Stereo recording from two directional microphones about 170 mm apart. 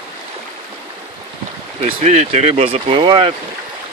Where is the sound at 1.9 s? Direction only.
40° right (ahead or behind).